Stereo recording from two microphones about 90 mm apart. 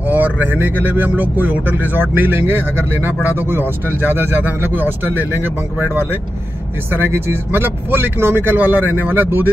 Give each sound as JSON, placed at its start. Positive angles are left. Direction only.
{"t": 0.0, "sound": "speech", "side_deg": -20}
{"t": 6.9, "sound": "speech", "side_deg": -25}